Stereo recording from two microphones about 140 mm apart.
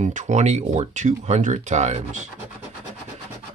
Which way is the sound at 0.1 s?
55° right (ahead or behind).